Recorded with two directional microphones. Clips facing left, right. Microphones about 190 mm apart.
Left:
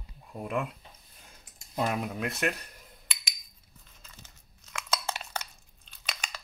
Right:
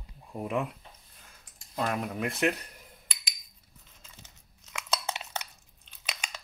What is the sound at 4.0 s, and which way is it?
Crunch, 15° right (ahead or behind).